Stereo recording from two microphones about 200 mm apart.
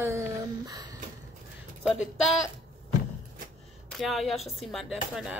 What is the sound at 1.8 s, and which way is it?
Speech, centre (ahead or behind).